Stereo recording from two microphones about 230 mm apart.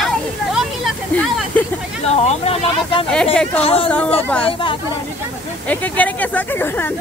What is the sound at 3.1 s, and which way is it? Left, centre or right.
Speech, centre.